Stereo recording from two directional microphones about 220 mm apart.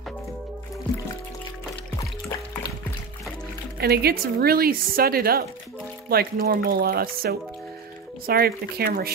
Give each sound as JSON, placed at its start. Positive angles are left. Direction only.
{"t": 3.8, "sound": "a woman's voice", "side_deg": -45}